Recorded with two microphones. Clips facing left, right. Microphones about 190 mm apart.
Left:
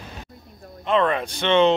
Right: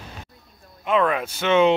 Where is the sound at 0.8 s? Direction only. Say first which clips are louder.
Even; 5° right (ahead or behind).